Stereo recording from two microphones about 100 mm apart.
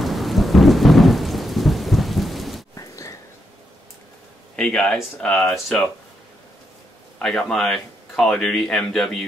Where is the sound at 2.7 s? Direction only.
35° left (ahead or behind).